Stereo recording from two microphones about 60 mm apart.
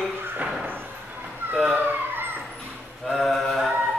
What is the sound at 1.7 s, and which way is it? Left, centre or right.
Emergency vehicle, right.